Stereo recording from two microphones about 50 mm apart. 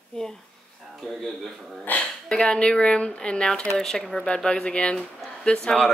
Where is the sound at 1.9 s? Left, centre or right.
Left.